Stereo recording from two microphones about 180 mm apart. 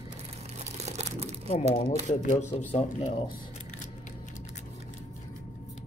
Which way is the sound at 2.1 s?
40° left (ahead or behind).